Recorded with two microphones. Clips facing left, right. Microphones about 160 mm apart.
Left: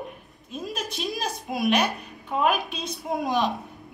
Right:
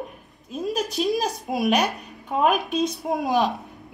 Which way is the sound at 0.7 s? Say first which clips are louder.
Right 9 dB; 40° right (ahead or behind).